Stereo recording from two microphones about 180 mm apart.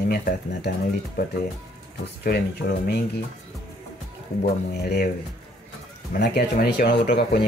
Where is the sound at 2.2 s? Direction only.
60° left (ahead or behind).